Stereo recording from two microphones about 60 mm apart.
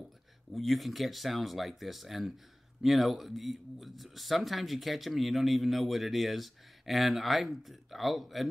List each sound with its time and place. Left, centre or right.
0.5 s speech: centre